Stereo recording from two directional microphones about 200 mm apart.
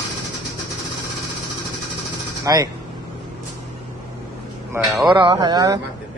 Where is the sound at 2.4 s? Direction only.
20° right (ahead or behind).